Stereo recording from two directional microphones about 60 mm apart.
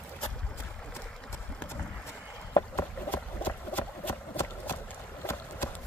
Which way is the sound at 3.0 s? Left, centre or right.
Left.